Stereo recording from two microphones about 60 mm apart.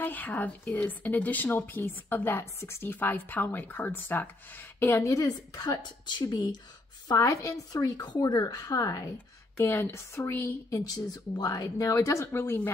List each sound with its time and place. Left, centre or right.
0.0 s a woman's voice: left
5.0 s speech: left
7.1 s a woman's voice: left
9.6 s speech: left
10.7 s speech: left
12.3 s speech: left